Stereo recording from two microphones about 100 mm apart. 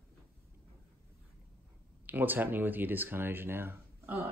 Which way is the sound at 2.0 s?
20° right (ahead or behind).